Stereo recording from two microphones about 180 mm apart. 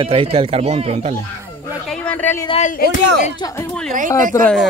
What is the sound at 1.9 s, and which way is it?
Speech, 10° left (ahead or behind).